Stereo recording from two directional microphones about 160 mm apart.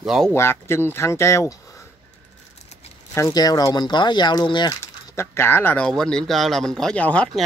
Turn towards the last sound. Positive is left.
turn(degrees=5)  # may be behind; listen again after turning